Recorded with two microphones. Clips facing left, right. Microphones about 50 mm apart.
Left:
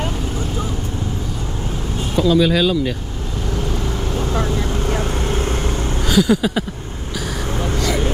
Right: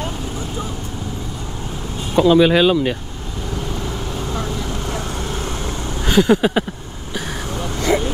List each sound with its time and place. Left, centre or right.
2.1 s speech: right
4.1 s vehicle: left
4.5 s vehicle: left
6.0 s a sound: right
7.7 s vehicle: right